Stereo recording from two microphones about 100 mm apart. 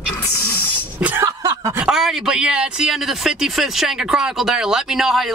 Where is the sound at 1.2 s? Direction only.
35° right (ahead or behind).